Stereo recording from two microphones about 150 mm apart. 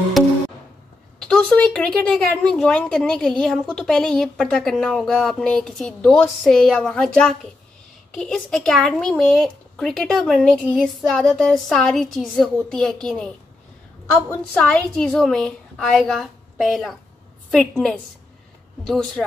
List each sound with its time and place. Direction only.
0.2 s music: centre (ahead or behind)
1.2 s a woman's voice: 5° left (ahead or behind)